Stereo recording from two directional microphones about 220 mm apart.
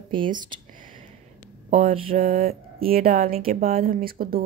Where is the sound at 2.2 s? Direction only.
40° right (ahead or behind).